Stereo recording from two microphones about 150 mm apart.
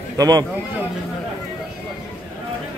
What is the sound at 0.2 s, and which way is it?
Speech, 25° right (ahead or behind).